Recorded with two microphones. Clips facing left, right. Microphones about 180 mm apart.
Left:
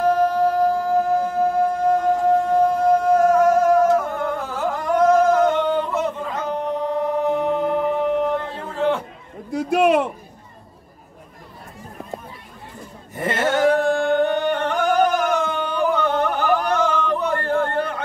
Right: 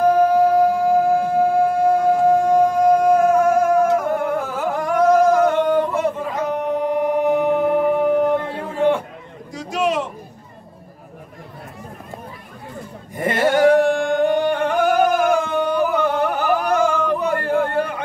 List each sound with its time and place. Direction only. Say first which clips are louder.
0.0 s music: right 3 dB; 10° right (ahead or behind)
3.9 s singing: right 2 dB; 10° right (ahead or behind)
9.5 s a sound: left 5 dB; 60° left (ahead or behind)
13.1 s singing: right 3 dB; 15° right (ahead or behind)